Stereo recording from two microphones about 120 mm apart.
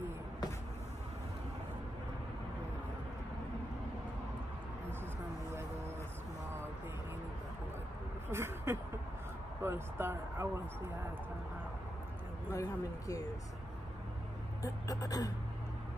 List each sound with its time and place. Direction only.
8.3 s a sound: 20° right (ahead or behind)
9.6 s speech: 20° right (ahead or behind)
12.5 s speech: 30° left (ahead or behind)
14.6 s speech: 30° left (ahead or behind)